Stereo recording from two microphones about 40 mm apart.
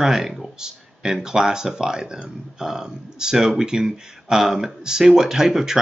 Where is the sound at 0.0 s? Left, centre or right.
Centre.